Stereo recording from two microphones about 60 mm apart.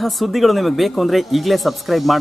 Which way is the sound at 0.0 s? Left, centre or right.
Centre.